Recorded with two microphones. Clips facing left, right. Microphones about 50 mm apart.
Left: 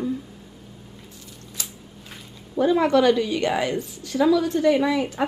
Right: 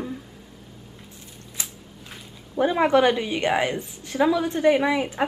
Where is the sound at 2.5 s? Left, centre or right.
Right.